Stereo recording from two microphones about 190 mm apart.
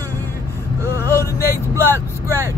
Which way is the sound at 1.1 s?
15° left (ahead or behind).